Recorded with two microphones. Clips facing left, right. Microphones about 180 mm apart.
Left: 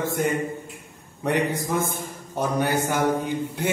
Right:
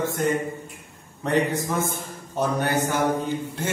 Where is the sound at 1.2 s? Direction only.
10° left (ahead or behind).